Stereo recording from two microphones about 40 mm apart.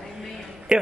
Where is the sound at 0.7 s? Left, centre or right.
Centre.